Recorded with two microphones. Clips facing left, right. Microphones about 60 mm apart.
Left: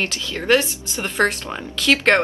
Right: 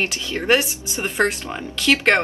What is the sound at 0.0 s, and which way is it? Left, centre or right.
Speech, centre.